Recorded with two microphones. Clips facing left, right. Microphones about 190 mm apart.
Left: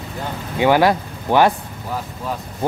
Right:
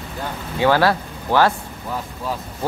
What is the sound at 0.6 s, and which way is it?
Speech, 15° left (ahead or behind).